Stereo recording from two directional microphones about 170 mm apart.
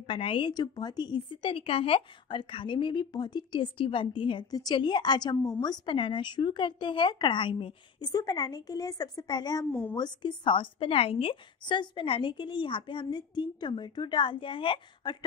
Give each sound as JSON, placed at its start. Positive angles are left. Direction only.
{"t": 0.0, "sound": "a woman's voice", "side_deg": 30}
{"t": 9.7, "sound": "speech", "side_deg": 10}
{"t": 9.9, "sound": "a woman's voice", "side_deg": 25}